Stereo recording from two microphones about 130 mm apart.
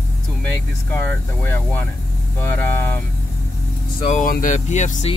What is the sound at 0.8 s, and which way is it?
Speech, 15° left (ahead or behind).